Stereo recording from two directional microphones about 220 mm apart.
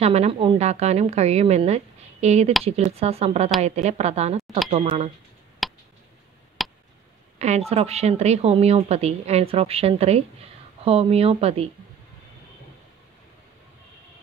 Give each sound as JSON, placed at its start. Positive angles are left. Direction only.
{"t": 0.0, "sound": "a woman's voice", "side_deg": -30}
{"t": 5.6, "sound": "a sound", "side_deg": 0}
{"t": 7.3, "sound": "a woman's voice", "side_deg": -30}